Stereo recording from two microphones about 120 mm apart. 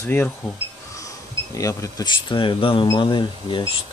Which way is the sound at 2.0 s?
40° left (ahead or behind).